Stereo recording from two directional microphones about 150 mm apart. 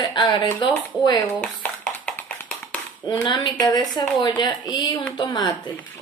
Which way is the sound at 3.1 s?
35° left (ahead or behind).